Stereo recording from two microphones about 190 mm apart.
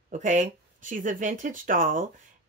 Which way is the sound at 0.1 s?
40° right (ahead or behind).